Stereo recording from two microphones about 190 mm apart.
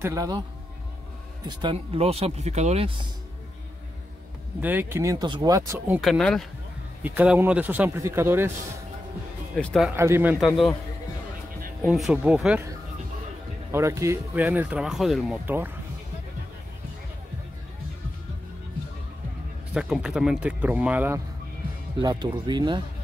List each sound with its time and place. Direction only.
0.0 s speech: 15° right (ahead or behind)
1.6 s speech: 30° right (ahead or behind)
4.6 s speech: 10° right (ahead or behind)
5.9 s speech: centre (ahead or behind)
7.0 s speech: 10° right (ahead or behind)
9.6 s speech: 5° left (ahead or behind)
9.8 s speech: 10° right (ahead or behind)
10.4 s speech: centre (ahead or behind)
11.9 s speech: 5° right (ahead or behind)
13.7 s speech: 15° right (ahead or behind)
19.7 s speech: 5° right (ahead or behind)
21.9 s speech: 20° right (ahead or behind)